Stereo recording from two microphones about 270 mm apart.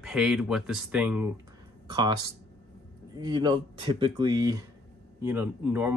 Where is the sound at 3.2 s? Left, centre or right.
Centre.